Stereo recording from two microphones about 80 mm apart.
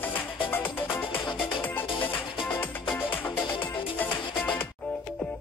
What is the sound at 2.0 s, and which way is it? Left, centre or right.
Music, left.